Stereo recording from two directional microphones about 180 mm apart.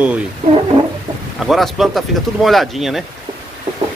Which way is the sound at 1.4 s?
Centre (ahead or behind).